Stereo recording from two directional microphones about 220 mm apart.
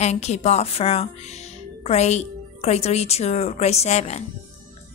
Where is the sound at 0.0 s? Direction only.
30° left (ahead or behind).